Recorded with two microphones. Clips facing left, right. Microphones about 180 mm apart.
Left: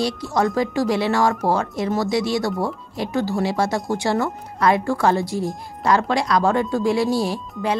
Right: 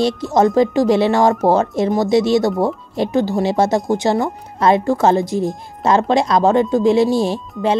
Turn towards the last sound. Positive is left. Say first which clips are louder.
# right 5 dB
turn(degrees=-25)  # may be behind; listen again after turning